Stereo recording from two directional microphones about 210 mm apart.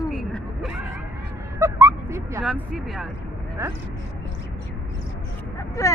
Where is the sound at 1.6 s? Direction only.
10° right (ahead or behind).